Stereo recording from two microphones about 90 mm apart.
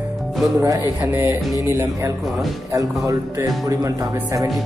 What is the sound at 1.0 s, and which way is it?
Speech, 25° right (ahead or behind).